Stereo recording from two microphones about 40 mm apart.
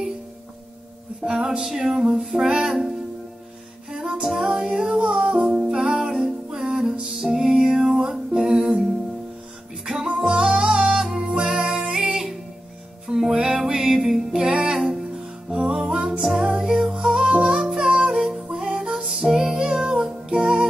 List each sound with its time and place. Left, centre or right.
1.2 s music: right
3.9 s music: centre
10.0 s music: right
11.0 s music: centre
11.5 s music: right